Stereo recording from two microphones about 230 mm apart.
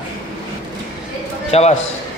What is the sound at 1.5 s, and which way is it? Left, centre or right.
Speech, left.